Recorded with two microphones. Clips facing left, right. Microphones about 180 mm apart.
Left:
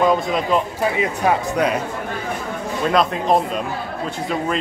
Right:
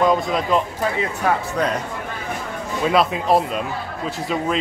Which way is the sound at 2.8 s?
5° right (ahead or behind).